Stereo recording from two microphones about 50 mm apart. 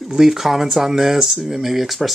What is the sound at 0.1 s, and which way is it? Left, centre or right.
Speech, centre.